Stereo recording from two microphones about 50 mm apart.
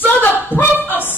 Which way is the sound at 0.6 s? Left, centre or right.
Left.